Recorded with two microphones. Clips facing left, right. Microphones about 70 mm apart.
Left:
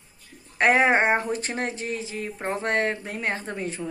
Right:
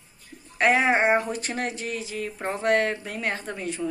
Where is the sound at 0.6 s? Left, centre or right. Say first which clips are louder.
Left 1 dB; left.